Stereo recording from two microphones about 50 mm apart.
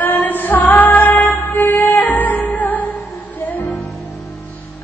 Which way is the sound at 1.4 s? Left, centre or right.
Left.